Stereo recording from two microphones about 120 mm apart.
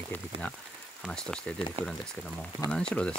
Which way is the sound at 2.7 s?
5° left (ahead or behind).